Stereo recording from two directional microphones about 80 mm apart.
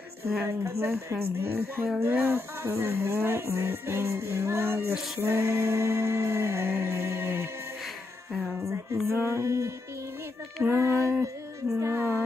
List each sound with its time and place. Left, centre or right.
0.4 s music: right
8.5 s music: right